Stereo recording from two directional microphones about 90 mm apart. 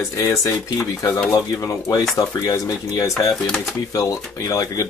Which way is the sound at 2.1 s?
40° left (ahead or behind).